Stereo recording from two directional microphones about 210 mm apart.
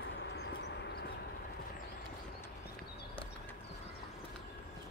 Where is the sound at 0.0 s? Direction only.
55° left (ahead or behind).